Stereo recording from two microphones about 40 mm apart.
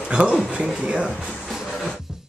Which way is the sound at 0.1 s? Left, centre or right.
Right.